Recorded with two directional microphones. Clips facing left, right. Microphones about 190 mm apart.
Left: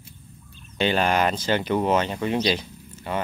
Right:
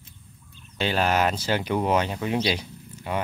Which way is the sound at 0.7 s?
Centre (ahead or behind).